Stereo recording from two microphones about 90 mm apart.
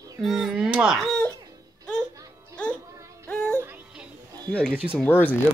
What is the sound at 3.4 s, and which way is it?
Music, 25° right (ahead or behind).